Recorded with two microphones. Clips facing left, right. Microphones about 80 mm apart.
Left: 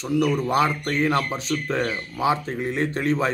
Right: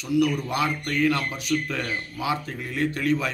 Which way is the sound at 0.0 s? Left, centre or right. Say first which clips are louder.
Left 1 dB; left.